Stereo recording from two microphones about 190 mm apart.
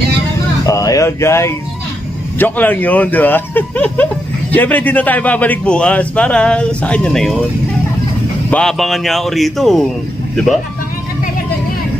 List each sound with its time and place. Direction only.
0.7 s speech: 15° left (ahead or behind)
8.5 s speech: 5° left (ahead or behind)